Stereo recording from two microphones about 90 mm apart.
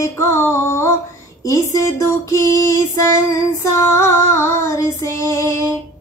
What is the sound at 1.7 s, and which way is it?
Music, 35° left (ahead or behind).